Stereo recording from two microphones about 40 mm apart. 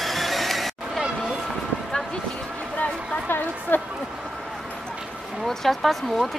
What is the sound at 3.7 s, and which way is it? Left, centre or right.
Speech, left.